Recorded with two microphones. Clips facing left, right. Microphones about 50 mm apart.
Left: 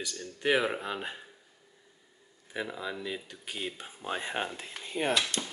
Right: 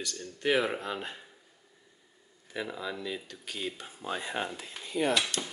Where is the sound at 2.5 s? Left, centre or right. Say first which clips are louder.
Even; centre; by 5.1 s left.